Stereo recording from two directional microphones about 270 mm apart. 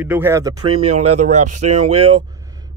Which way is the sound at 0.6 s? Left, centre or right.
Right.